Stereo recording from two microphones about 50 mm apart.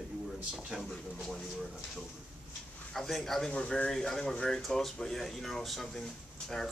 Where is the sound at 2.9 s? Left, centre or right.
Centre.